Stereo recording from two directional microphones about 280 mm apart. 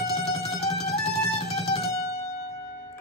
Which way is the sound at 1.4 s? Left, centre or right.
Left.